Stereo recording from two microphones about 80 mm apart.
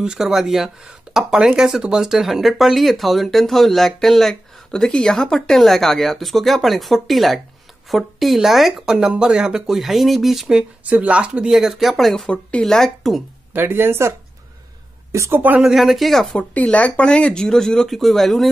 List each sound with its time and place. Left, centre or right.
0.0 s speech: centre
10.9 s speech: centre
12.3 s speech: centre
13.5 s speech: right
15.1 s speech: right
15.6 s speech: centre
16.3 s speech: centre